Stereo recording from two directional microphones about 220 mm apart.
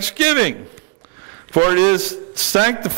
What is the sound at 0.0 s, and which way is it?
A man's voice, 15° right (ahead or behind).